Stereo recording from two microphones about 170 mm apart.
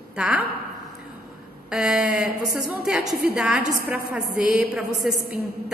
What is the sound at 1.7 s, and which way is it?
A woman's voice, 5° right (ahead or behind).